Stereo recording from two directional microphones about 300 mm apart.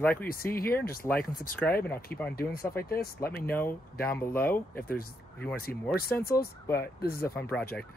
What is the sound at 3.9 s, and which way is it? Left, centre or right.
Speech, left.